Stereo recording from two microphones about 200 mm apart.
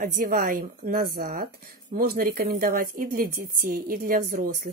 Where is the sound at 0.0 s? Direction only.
45° right (ahead or behind).